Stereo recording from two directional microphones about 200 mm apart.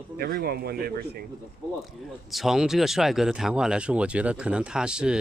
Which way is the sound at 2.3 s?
Centre (ahead or behind).